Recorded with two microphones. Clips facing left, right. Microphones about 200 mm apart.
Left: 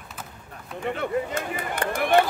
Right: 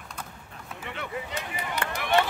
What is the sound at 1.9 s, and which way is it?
Chop, 50° left (ahead or behind).